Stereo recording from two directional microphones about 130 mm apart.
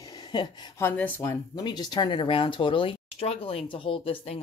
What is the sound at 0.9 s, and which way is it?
Speech, 15° left (ahead or behind).